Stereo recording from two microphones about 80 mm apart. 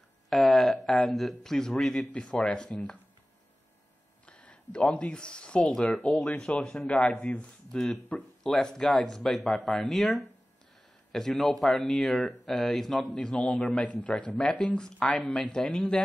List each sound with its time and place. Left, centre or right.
0.3 s speech: centre
4.3 s speech: centre